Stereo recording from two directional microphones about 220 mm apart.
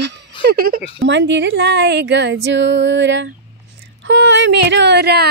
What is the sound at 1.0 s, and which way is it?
Speech, 55° right (ahead or behind).